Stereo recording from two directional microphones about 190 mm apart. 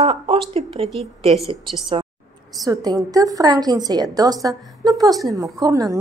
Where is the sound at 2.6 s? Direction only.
20° right (ahead or behind).